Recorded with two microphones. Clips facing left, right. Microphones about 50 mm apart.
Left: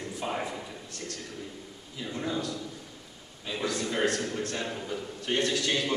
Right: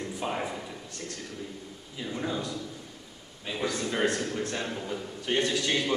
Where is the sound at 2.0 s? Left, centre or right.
Centre.